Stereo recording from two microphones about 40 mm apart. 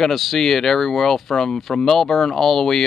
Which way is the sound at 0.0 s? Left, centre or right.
Centre.